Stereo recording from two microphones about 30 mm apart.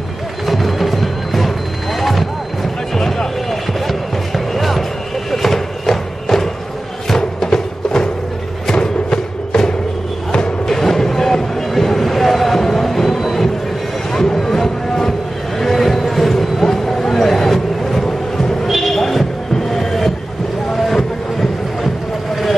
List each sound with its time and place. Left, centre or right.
0.5 s music: centre
2.0 s vehicle: centre
4.6 s music: centre
5.3 s thump: centre
7.1 s music: centre
10.7 s a sound: centre
20.7 s boat: centre